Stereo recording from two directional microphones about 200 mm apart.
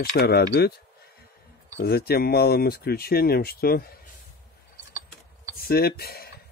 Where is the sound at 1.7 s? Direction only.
50° left (ahead or behind).